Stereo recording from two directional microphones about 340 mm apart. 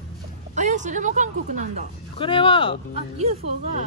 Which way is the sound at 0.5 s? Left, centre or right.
Right.